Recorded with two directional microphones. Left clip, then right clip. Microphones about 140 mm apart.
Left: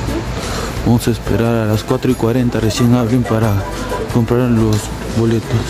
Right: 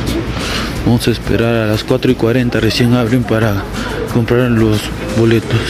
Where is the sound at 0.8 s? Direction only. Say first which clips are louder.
Right 1 dB; 20° left (ahead or behind).